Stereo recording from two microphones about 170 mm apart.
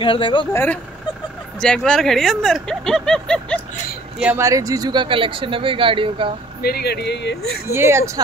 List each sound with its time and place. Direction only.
0.0 s speech: 30° left (ahead or behind)
0.5 s speech: 15° left (ahead or behind)
4.2 s speech: 10° right (ahead or behind); by 6.3 s 30° right (ahead or behind)
6.6 s speech: 70° left (ahead or behind)
7.7 s speech: 15° right (ahead or behind)